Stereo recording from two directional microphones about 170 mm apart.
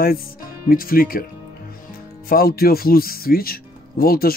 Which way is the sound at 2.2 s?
60° left (ahead or behind).